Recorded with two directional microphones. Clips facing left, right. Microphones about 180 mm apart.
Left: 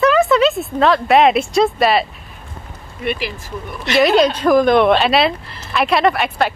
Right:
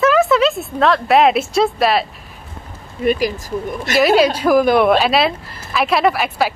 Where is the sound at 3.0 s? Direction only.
40° right (ahead or behind).